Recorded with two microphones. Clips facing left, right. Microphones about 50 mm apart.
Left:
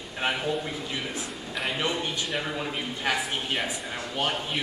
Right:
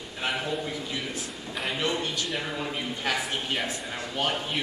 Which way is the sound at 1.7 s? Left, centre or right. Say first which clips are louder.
Right 2 dB; centre.